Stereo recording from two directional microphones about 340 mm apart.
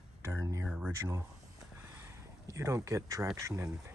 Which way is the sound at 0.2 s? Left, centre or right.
Centre.